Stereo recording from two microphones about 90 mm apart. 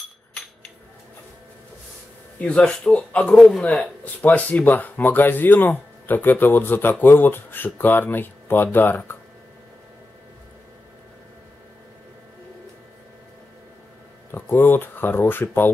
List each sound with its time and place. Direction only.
2.3 s speech: 15° left (ahead or behind)
14.3 s speech: 20° left (ahead or behind)